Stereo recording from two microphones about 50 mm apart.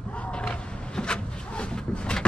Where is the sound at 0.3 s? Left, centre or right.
Centre.